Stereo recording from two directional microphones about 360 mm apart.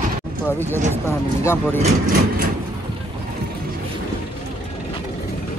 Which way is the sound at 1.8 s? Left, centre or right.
Right.